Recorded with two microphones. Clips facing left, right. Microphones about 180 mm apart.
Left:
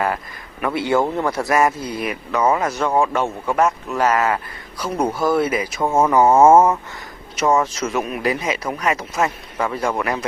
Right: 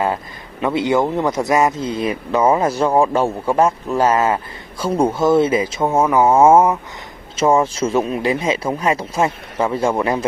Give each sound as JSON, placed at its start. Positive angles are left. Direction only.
{"t": 0.0, "sound": "a man's voice", "side_deg": -25}
{"t": 5.9, "sound": "a sound", "side_deg": -5}
{"t": 7.3, "sound": "speech", "side_deg": -30}